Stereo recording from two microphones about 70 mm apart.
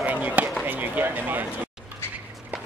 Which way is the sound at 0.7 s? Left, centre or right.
Right.